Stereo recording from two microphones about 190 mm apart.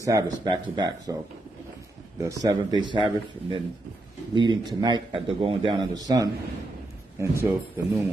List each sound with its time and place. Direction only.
0.0 s a man's voice: 20° right (ahead or behind)
2.1 s a man's voice: 15° right (ahead or behind)